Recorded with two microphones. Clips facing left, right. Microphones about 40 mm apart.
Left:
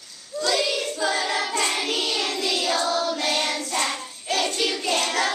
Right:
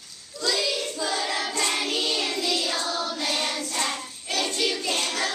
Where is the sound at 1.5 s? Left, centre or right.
Left.